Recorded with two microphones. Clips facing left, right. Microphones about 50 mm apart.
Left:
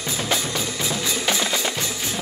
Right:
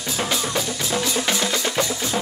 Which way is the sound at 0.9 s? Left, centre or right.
Right.